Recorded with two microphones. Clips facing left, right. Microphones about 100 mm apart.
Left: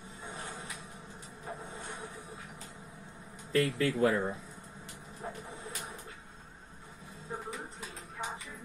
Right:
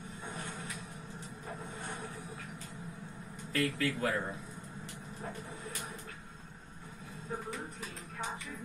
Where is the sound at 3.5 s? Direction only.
30° left (ahead or behind).